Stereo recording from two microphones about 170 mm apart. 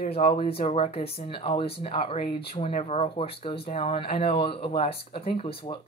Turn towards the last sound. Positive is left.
turn(degrees=35)  # may be behind; listen again after turning